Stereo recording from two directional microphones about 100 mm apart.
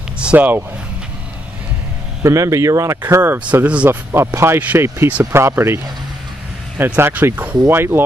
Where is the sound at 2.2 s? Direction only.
30° right (ahead or behind).